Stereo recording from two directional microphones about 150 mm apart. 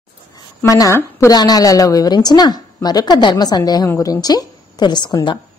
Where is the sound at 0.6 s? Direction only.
20° left (ahead or behind).